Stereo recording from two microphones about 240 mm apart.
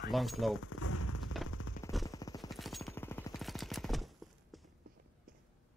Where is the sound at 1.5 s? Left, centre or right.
Left.